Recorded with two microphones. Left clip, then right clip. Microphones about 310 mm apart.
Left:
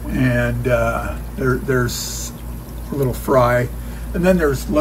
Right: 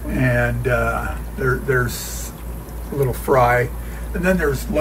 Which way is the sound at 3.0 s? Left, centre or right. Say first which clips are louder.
Even; centre.